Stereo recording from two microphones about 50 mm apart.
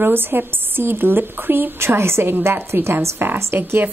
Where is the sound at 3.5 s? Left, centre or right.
Right.